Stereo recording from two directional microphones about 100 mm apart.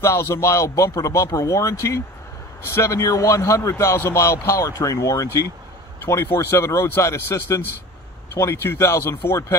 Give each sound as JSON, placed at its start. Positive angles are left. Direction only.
{"t": 0.0, "sound": "a man's voice", "side_deg": 30}